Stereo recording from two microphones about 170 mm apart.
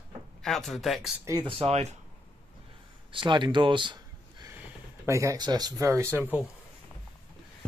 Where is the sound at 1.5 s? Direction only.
35° right (ahead or behind).